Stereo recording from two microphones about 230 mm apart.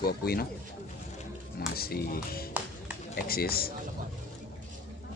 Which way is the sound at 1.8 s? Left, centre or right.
Left.